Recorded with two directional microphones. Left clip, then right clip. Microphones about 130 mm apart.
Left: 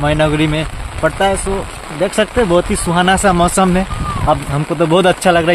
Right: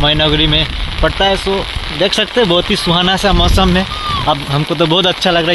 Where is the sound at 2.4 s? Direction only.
10° right (ahead or behind); by 5.1 s 5° left (ahead or behind).